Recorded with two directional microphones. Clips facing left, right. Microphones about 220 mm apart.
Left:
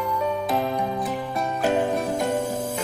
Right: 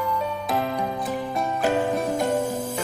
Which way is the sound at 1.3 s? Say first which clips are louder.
Even; centre (ahead or behind).